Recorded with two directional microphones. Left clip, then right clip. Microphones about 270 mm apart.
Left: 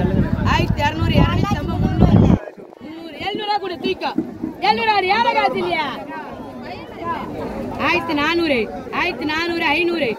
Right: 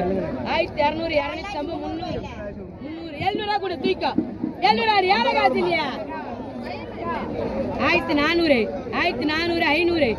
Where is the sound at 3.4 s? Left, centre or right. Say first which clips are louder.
Left 2 dB; centre.